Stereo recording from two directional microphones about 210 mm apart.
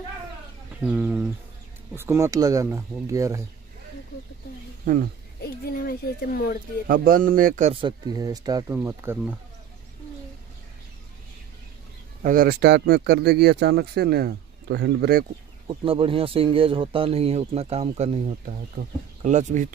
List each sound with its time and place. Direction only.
0.7 s speech: 10° right (ahead or behind)
4.8 s speech: 40° right (ahead or behind)
5.4 s a child's voice: 45° left (ahead or behind)
6.9 s speech: 40° right (ahead or behind)
7.7 s speech: 20° right (ahead or behind)
12.2 s speech: 40° right (ahead or behind)
15.6 s speech: 25° right (ahead or behind)